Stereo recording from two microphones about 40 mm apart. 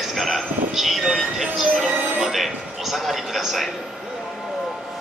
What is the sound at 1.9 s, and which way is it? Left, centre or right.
Music, right.